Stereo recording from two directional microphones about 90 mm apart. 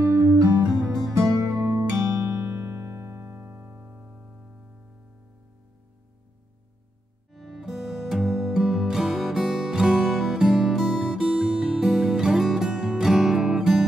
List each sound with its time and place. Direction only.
0.1 s music: 35° right (ahead or behind); by 4.5 s 15° right (ahead or behind)
7.3 s music: centre (ahead or behind)